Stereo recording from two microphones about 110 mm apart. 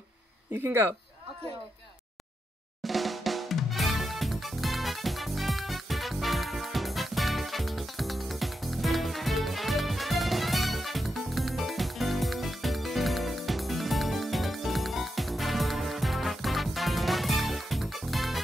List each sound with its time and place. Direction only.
0.5 s speech: 20° right (ahead or behind)
2.8 s drum: centre (ahead or behind)